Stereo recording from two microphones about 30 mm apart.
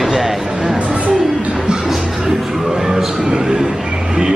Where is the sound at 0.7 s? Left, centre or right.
Right.